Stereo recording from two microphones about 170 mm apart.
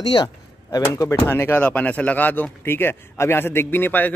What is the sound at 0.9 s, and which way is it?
Speech, 15° left (ahead or behind).